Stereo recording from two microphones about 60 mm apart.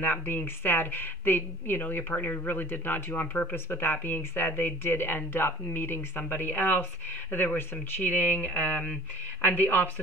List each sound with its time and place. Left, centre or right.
0.0 s speech: left